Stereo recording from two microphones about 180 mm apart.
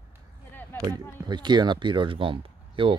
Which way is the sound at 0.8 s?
25° right (ahead or behind).